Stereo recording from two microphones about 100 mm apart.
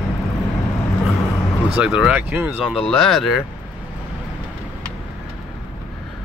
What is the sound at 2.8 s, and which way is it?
Speech, centre (ahead or behind).